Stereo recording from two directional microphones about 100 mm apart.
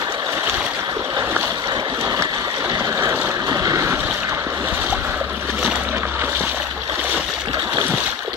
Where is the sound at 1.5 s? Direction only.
45° right (ahead or behind).